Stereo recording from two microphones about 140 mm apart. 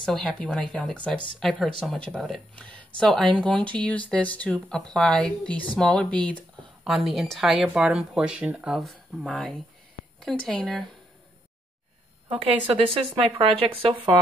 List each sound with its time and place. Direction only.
0.0 s speech: 5° left (ahead or behind)
12.3 s a woman's voice: 40° right (ahead or behind)